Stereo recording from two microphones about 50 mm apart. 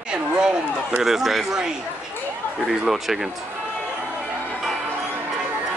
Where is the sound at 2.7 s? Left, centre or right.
Centre.